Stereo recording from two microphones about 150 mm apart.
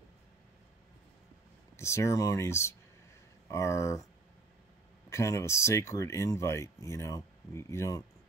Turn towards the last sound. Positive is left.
turn(degrees=20)  # may be behind; listen again after turning